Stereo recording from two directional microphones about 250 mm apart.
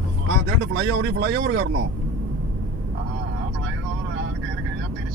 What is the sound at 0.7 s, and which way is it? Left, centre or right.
Speech, right.